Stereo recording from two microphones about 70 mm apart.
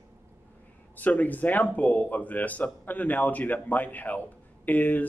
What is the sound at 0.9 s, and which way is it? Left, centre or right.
Speech, left.